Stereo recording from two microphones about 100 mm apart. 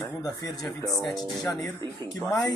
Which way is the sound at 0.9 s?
Centre (ahead or behind).